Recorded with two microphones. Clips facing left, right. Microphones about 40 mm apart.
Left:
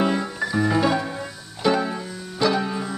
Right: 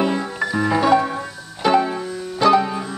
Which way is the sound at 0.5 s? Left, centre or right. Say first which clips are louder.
Right 4 dB; centre.